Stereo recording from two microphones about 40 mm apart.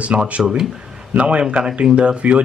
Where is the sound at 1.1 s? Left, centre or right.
Right.